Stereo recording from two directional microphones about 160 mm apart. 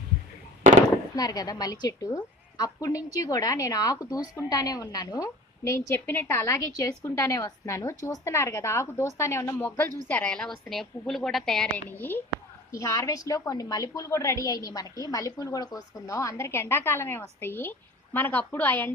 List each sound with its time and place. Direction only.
1.1 s a woman's voice: 25° left (ahead or behind)